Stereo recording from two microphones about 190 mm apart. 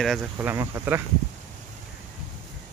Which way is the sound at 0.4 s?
10° right (ahead or behind).